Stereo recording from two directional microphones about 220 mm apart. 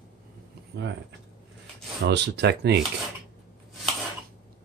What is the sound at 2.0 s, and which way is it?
Speech, 50° right (ahead or behind).